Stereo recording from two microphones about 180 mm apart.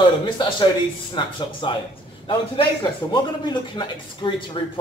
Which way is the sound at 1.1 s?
25° left (ahead or behind).